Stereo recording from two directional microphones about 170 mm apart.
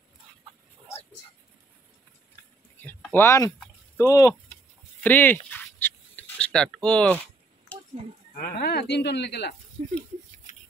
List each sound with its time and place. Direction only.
2.8 s a sound: 10° left (ahead or behind)
4.0 s speech: 20° left (ahead or behind)
5.0 s dog: 10° left (ahead or behind)
8.4 s speech: 65° left (ahead or behind)
9.8 s speech: 35° right (ahead or behind)